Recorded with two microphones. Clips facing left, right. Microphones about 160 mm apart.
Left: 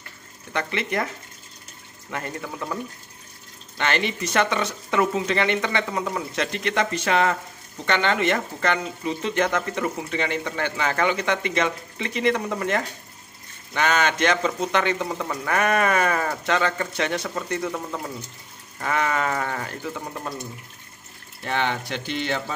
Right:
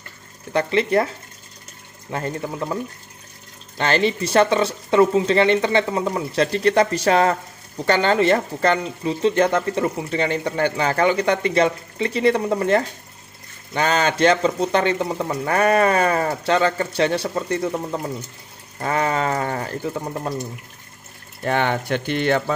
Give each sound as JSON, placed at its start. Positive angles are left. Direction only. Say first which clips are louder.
{"t": 0.5, "sound": "speech", "louder": "right 8 dB", "side_deg": -35}
{"t": 21.5, "sound": "speech", "louder": "right 5 dB", "side_deg": -50}